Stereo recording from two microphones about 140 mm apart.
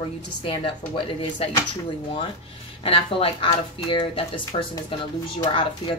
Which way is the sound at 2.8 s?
40° left (ahead or behind).